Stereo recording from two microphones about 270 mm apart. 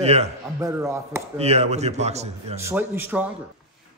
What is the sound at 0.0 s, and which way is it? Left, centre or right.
Speech, right.